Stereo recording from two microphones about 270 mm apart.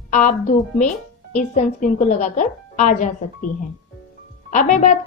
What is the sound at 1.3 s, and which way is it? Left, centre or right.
Speech, left.